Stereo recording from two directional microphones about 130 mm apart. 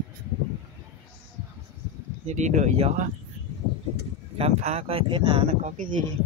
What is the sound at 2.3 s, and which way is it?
Speech, 65° right (ahead or behind).